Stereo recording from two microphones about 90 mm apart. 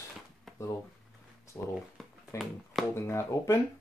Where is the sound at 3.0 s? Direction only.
30° left (ahead or behind).